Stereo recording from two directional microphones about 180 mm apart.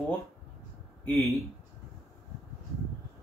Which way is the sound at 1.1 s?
15° left (ahead or behind).